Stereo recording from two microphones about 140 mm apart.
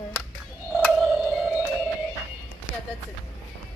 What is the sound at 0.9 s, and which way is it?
Music, centre (ahead or behind).